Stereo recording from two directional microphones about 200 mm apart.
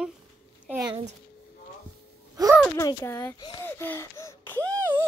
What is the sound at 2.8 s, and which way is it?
Speech, 15° left (ahead or behind).